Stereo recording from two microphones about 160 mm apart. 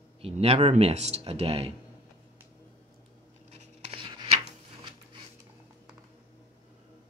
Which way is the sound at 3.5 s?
40° right (ahead or behind).